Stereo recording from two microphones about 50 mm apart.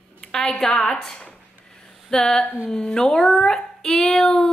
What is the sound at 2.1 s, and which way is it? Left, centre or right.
A woman's voice, centre.